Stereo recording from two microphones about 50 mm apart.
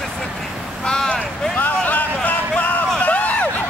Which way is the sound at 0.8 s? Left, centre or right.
Centre.